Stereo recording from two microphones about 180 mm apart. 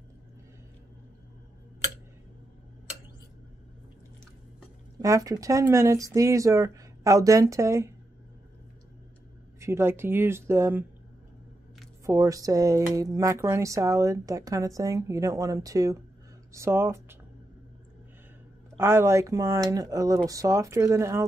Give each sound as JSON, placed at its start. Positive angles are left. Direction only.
{"t": 4.9, "sound": "speech", "side_deg": -20}
{"t": 9.6, "sound": "speech", "side_deg": -15}
{"t": 12.1, "sound": "speech", "side_deg": -20}
{"t": 18.8, "sound": "speech", "side_deg": -15}